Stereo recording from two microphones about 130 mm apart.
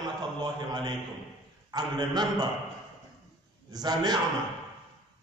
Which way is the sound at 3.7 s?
30° right (ahead or behind).